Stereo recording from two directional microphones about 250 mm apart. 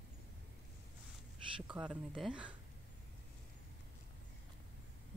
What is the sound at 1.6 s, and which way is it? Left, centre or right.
Speech, centre.